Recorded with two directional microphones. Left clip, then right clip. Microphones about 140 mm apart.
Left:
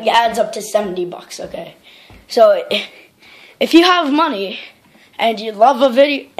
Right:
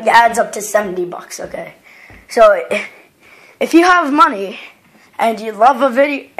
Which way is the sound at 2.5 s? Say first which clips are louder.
Even; 35° left (ahead or behind).